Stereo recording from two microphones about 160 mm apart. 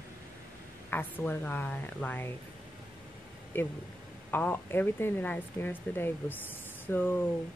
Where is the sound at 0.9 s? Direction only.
10° left (ahead or behind).